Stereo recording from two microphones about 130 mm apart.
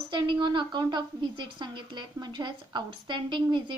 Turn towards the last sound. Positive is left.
turn(degrees=-35)  # may be behind; listen again after turning